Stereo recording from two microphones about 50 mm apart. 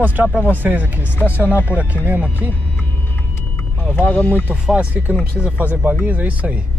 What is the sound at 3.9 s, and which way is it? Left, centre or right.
Speech, left.